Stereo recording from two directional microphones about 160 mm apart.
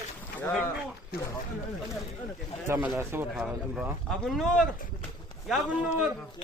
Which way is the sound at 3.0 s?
15° right (ahead or behind).